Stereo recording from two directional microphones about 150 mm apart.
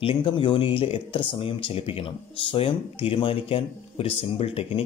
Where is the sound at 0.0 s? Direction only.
35° left (ahead or behind).